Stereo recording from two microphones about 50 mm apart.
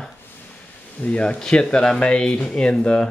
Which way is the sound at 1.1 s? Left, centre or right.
Left.